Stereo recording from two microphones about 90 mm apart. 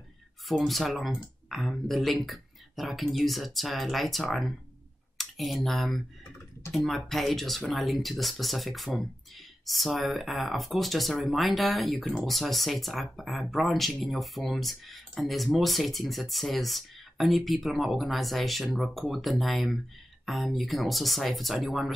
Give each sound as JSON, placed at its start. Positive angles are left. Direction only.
{"t": 0.6, "sound": "speech", "side_deg": 0}